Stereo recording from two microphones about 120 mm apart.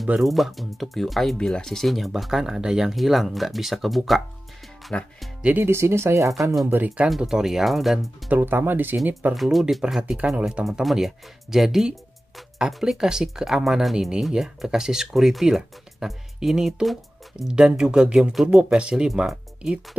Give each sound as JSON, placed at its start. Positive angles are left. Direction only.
{"t": 0.0, "sound": "speech", "side_deg": 0}
{"t": 5.4, "sound": "speech", "side_deg": -15}
{"t": 6.7, "sound": "speech", "side_deg": -15}
{"t": 8.3, "sound": "speech", "side_deg": -15}
{"t": 9.3, "sound": "speech", "side_deg": 0}